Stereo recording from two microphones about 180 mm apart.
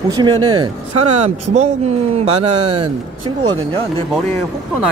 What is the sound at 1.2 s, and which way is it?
Speech, 35° right (ahead or behind).